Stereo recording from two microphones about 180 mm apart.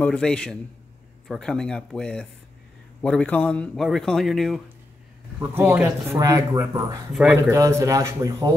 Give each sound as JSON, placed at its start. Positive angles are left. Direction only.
{"t": 0.0, "sound": "speech", "side_deg": 5}
{"t": 5.4, "sound": "speech", "side_deg": -10}